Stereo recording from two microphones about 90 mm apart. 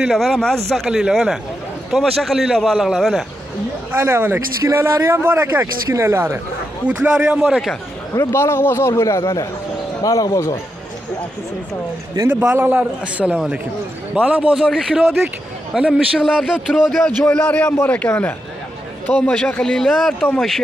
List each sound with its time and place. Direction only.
0.1 s a man's voice: centre (ahead or behind)
3.9 s speech: 25° right (ahead or behind)
7.0 s a man's voice: 10° right (ahead or behind)
8.1 s a man's voice: 35° left (ahead or behind)
12.3 s a man's voice: 15° right (ahead or behind)
14.1 s a man's voice: 15° right (ahead or behind); by 20.6 s centre (ahead or behind)